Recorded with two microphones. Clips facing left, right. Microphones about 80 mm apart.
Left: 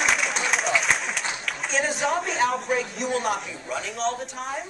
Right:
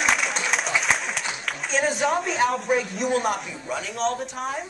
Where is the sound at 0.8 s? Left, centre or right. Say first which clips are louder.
Even; centre.